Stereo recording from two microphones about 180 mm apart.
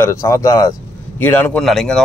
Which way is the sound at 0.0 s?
15° left (ahead or behind).